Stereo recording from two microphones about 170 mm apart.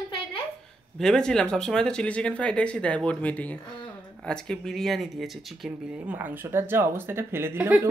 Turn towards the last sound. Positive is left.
turn(degrees=-10)  # may be behind; listen again after turning